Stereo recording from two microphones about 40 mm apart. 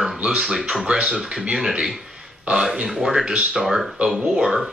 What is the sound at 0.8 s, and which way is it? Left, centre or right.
Speech, right.